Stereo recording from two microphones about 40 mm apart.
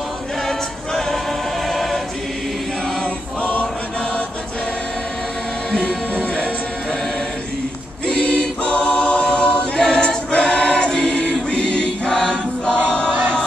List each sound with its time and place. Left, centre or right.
0.5 s choir: centre
5.8 s music: centre
8.1 s choir: left
12.8 s crowd: left
13.2 s music: left